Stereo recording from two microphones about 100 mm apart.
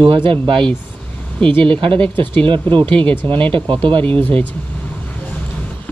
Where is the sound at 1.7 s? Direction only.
60° right (ahead or behind).